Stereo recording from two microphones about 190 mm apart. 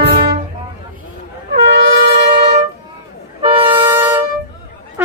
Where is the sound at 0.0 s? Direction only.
60° right (ahead or behind).